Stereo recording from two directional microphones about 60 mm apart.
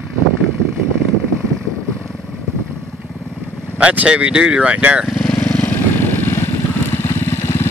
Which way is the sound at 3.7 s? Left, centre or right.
Right.